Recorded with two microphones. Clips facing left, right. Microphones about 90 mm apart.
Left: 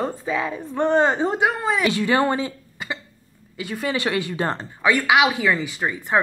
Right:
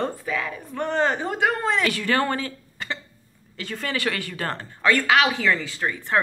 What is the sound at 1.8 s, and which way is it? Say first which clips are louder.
A woman's voice: left 3 dB; 20° left (ahead or behind).